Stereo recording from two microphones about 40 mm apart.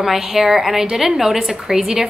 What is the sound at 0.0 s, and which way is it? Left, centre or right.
A woman's voice, centre.